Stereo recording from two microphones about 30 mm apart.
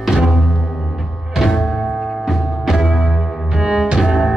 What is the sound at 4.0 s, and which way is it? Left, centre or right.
Music, centre.